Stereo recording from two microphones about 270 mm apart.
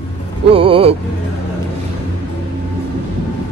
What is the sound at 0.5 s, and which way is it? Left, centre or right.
Speech, centre.